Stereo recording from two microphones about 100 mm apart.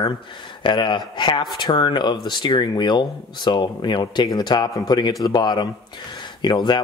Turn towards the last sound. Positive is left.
turn(degrees=50)  # may be behind; listen again after turning